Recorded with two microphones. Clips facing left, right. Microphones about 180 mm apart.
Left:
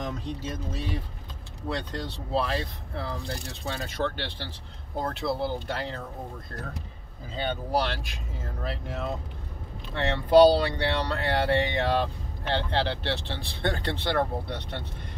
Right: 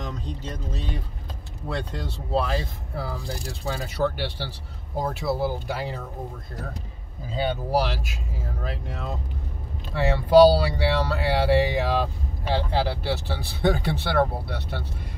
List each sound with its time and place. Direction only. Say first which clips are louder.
0.1 s speech: left 1 dB; 5° left (ahead or behind)
7.3 s speech: right 4 dB; 10° right (ahead or behind)